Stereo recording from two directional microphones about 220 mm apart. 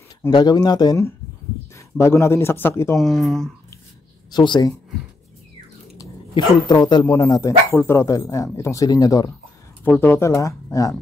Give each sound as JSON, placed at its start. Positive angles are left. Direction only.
{"t": 0.2, "sound": "speech", "side_deg": 20}
{"t": 4.3, "sound": "speech", "side_deg": 20}
{"t": 5.9, "sound": "a sound", "side_deg": 20}
{"t": 6.9, "sound": "speech", "side_deg": 20}